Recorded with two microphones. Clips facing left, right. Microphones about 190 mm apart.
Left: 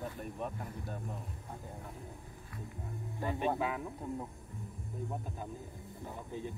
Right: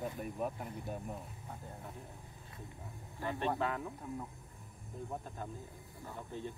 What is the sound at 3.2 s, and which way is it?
Speech, 20° left (ahead or behind).